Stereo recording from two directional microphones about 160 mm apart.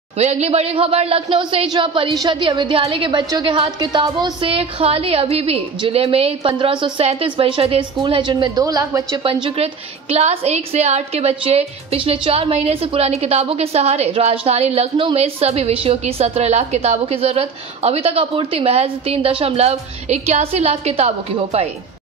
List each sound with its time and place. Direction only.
0.2 s a woman's voice: 45° right (ahead or behind); by 9.2 s 20° right (ahead or behind)
9.2 s a woman's voice: 35° right (ahead or behind)